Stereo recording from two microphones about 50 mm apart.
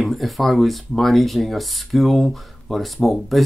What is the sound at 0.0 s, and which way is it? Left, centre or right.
Speech, centre.